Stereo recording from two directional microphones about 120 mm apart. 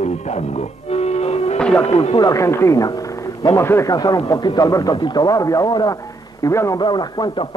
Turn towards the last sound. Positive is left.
turn(degrees=35)  # may be behind; listen again after turning